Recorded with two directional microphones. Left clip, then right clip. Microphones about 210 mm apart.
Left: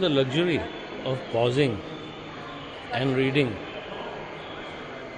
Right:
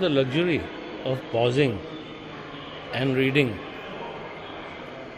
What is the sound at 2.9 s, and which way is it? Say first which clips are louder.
Speech: right 1 dB; 10° right (ahead or behind).